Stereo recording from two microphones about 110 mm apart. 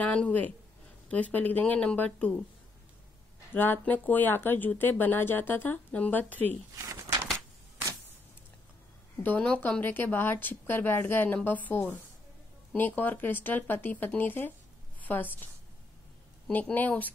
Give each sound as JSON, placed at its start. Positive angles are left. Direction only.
{"t": 0.0, "sound": "speech", "side_deg": 15}
{"t": 3.5, "sound": "speech", "side_deg": 20}
{"t": 6.8, "sound": "a sound", "side_deg": -25}
{"t": 9.2, "sound": "a woman's voice", "side_deg": 15}
{"t": 16.5, "sound": "speech", "side_deg": 15}